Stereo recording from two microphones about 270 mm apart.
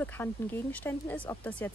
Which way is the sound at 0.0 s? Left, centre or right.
Centre.